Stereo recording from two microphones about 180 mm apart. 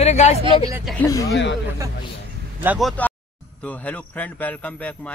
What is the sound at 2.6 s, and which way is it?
Speech, 10° right (ahead or behind).